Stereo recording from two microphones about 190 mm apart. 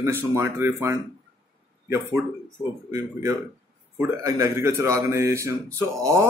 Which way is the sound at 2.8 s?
15° right (ahead or behind).